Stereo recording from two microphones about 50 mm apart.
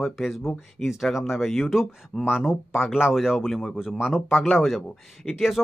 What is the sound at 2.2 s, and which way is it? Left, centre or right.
Speech, centre.